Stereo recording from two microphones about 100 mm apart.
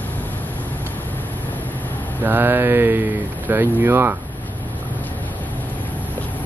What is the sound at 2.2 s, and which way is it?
Speech, 20° right (ahead or behind).